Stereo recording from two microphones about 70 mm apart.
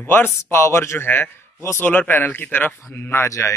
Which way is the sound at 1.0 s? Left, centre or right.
Left.